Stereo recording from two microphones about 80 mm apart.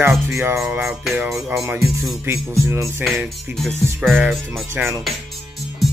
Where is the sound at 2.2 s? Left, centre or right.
Right.